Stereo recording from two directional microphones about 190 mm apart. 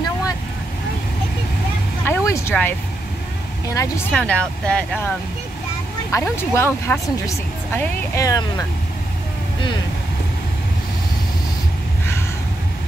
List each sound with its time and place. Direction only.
2.0 s vehicle: 15° left (ahead or behind)
3.6 s speech: 15° left (ahead or behind)
4.1 s speech: 5° left (ahead or behind)
6.1 s speech: 15° left (ahead or behind)